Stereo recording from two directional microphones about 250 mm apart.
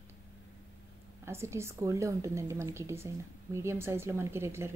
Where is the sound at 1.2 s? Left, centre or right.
Centre.